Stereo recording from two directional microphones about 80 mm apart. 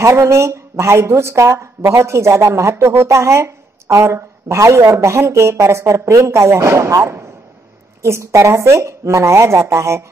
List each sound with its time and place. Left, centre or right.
0.0 s a woman's voice: right